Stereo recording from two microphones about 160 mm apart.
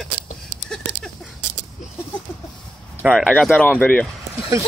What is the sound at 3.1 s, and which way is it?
Speech, 5° left (ahead or behind).